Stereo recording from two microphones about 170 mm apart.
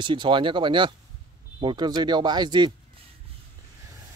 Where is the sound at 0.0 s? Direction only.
30° right (ahead or behind).